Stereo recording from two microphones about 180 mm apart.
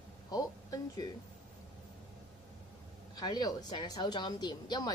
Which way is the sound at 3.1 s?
20° left (ahead or behind).